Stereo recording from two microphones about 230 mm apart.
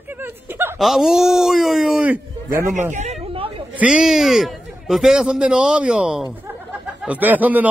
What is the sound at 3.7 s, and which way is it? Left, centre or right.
A man's voice, centre.